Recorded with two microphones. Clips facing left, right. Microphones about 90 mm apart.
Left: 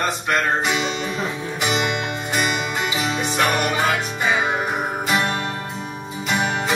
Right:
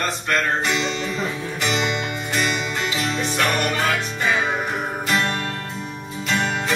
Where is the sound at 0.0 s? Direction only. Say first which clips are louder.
Left 2 dB; 10° left (ahead or behind).